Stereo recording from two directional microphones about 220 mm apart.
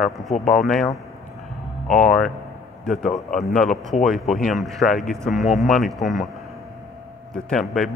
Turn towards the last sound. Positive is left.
turn(degrees=0)  # may be behind; listen again after turning